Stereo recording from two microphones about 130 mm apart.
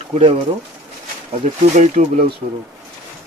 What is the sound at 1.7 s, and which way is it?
Speech, 65° right (ahead or behind).